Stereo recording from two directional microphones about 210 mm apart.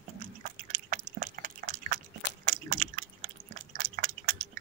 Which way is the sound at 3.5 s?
40° right (ahead or behind).